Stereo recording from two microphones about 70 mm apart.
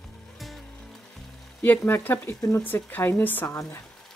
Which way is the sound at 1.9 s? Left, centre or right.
Left.